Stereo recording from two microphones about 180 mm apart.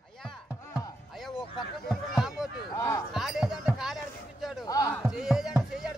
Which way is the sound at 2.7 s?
15° left (ahead or behind).